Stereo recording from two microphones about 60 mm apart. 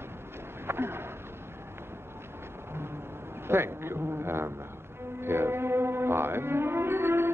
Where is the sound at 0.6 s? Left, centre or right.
Right.